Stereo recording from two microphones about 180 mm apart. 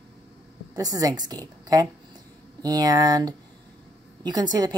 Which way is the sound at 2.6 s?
20° right (ahead or behind).